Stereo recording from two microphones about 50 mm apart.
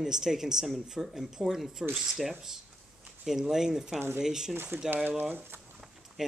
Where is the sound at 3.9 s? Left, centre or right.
Right.